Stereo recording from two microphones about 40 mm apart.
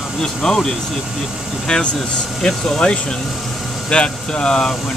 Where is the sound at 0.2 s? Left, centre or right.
Centre.